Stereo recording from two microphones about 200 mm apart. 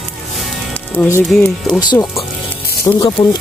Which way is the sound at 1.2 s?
5° left (ahead or behind).